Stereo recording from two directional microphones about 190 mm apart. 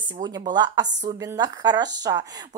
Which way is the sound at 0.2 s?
20° right (ahead or behind).